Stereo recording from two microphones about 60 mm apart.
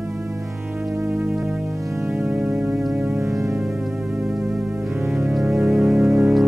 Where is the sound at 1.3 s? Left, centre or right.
Centre.